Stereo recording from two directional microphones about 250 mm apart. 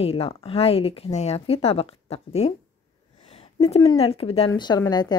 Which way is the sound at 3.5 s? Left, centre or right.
Left.